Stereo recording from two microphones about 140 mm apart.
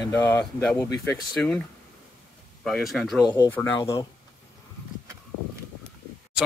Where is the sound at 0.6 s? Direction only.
10° left (ahead or behind).